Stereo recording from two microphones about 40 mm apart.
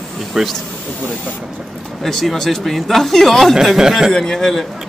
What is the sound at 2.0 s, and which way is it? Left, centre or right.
Speech, centre.